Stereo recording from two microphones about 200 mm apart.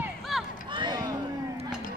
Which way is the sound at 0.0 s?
Centre (ahead or behind).